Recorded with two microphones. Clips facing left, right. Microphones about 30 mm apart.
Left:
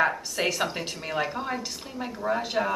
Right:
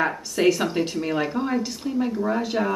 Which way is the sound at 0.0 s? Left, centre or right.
Centre.